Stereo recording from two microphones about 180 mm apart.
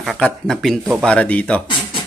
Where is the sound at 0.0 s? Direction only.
Centre (ahead or behind).